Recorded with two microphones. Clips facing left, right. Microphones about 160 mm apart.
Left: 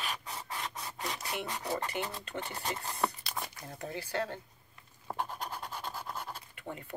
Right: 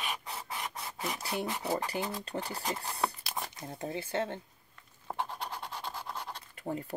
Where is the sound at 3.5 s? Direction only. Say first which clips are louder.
Right 3 dB; 30° right (ahead or behind).